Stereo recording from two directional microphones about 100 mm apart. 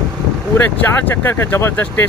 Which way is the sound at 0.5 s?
20° left (ahead or behind).